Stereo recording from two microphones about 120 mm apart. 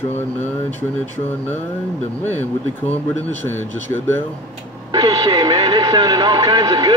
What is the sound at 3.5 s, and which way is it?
Speech, 20° left (ahead or behind).